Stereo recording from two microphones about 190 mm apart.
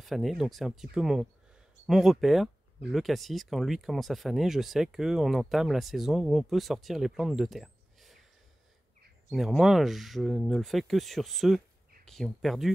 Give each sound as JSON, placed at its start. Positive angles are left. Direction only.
{"t": 0.0, "sound": "speech", "side_deg": 0}
{"t": 9.3, "sound": "speech", "side_deg": 0}